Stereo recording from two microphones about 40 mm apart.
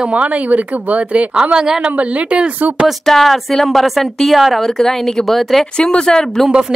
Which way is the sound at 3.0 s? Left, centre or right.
Centre.